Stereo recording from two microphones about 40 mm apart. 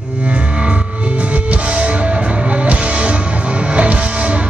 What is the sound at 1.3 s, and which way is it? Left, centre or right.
Music, right.